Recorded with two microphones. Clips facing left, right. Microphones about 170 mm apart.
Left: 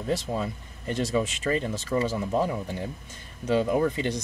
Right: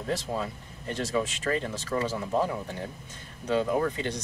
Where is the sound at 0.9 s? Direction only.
15° left (ahead or behind).